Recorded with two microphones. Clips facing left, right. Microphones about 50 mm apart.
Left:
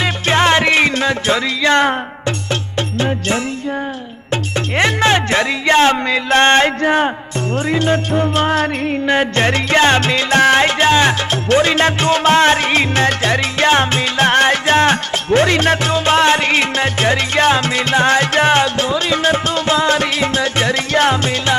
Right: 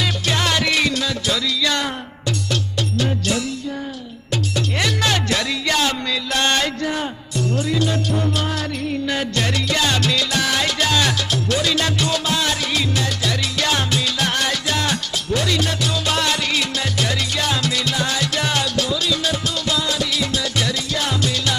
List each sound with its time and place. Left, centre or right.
0.0 s music: left
3.0 s music: left
4.3 s speech: left
7.5 s music: left